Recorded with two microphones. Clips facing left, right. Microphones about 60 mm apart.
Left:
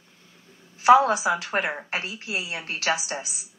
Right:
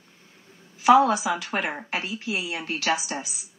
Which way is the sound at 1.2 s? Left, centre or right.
Left.